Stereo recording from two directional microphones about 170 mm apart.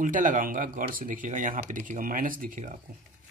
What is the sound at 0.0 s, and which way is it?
Speech, 50° right (ahead or behind).